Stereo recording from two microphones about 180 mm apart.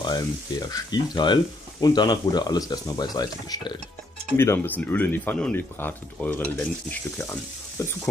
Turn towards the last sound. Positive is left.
turn(degrees=15)  # may be behind; listen again after turning